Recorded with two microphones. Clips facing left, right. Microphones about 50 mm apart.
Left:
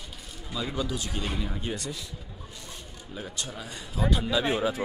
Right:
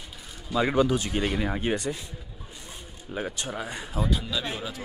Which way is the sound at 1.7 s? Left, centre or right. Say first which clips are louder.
Right 5 dB; right.